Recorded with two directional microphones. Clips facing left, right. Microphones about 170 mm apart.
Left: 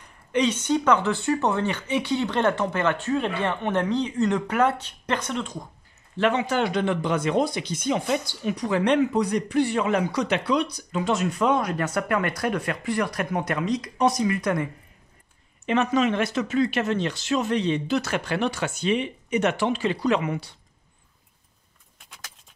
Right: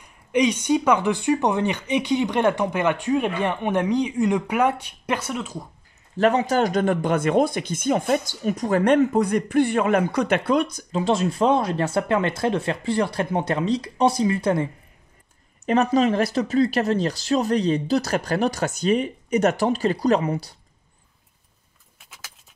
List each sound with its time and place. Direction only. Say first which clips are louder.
0.0 s speech: right 3 dB; 15° right (ahead or behind)
6.1 s speech: right 4 dB; 40° right (ahead or behind)
10.9 s speech: right 3 dB; 30° right (ahead or behind)